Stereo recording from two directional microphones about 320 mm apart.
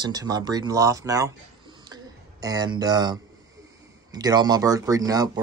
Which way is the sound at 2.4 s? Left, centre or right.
Centre.